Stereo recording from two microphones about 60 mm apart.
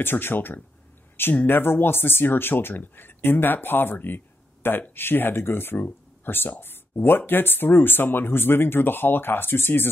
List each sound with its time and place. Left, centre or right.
0.0 s speech: left